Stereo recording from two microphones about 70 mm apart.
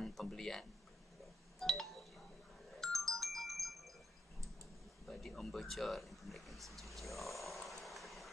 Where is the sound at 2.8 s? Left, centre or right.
Centre.